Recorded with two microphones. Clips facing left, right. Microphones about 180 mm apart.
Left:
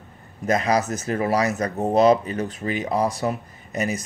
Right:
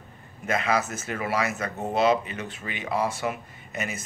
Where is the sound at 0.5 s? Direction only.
40° left (ahead or behind).